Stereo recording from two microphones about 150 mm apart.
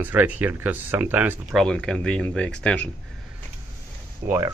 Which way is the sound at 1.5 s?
5° left (ahead or behind).